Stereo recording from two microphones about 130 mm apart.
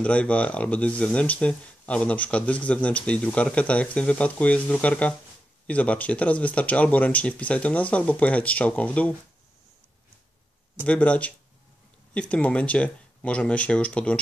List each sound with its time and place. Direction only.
0.0 s speech: 10° left (ahead or behind)
10.9 s speech: 10° left (ahead or behind)